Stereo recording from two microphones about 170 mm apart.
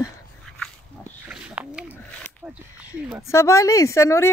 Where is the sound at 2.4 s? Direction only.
15° right (ahead or behind).